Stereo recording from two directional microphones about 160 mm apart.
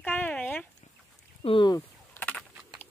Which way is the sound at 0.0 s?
10° left (ahead or behind).